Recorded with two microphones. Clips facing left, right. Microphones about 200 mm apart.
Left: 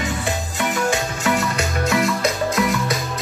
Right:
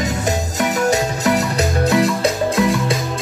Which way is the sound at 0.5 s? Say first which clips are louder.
Right 4 dB; 40° right (ahead or behind).